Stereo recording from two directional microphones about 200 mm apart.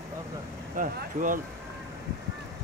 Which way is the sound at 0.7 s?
40° right (ahead or behind).